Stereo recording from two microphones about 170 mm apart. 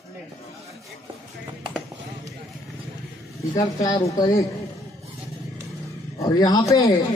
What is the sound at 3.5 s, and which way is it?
Speech, 20° left (ahead or behind).